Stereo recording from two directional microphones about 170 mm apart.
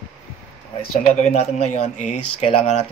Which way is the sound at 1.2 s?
40° left (ahead or behind).